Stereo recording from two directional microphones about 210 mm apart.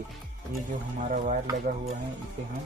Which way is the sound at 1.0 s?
35° right (ahead or behind).